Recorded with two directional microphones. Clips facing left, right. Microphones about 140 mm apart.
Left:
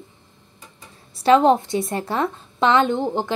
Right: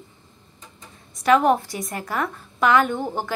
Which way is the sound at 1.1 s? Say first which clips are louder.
Left 3 dB; 25° left (ahead or behind).